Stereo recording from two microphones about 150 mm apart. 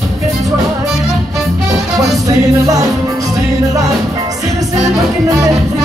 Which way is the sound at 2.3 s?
25° right (ahead or behind).